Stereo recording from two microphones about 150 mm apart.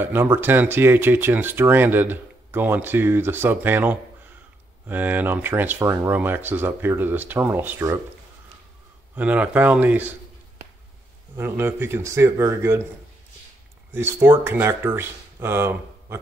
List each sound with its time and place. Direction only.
0.0 s speech: 15° right (ahead or behind)
9.1 s speech: 10° right (ahead or behind)
11.3 s speech: 15° right (ahead or behind)
13.9 s speech: 15° right (ahead or behind)